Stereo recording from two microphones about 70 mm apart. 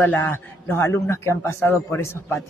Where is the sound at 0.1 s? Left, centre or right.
Left.